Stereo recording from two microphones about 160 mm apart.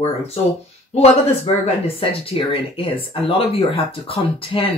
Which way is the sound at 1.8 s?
35° left (ahead or behind).